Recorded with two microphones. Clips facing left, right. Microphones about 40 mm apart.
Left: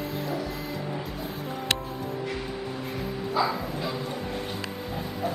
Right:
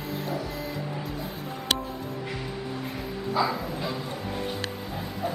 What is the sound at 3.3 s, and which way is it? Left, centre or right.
Bow-wow, centre.